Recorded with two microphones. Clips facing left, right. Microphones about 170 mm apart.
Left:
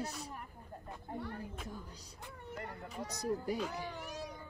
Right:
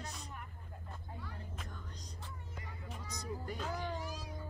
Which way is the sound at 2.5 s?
65° left (ahead or behind).